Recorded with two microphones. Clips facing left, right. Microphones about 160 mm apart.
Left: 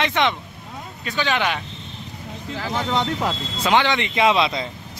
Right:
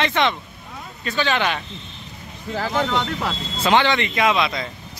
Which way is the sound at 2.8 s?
15° left (ahead or behind).